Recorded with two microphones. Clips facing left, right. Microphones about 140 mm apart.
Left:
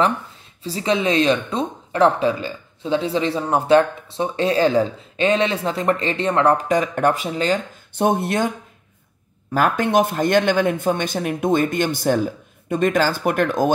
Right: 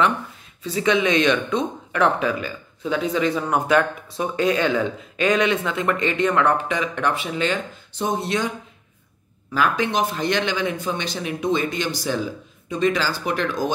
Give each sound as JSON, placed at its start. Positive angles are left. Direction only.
{"t": 0.7, "sound": "speech", "side_deg": 35}
{"t": 7.9, "sound": "speech", "side_deg": 55}